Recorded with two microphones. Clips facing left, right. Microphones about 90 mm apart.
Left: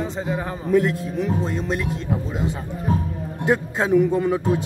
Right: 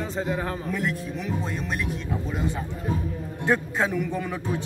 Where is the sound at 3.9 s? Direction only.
25° left (ahead or behind).